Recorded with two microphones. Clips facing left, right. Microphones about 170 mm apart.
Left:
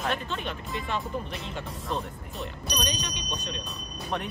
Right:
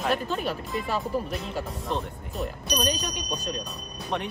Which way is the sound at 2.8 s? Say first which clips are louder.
Right 5 dB; 40° right (ahead or behind).